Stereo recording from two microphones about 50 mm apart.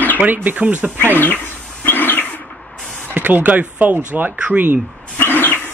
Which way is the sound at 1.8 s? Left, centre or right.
Left.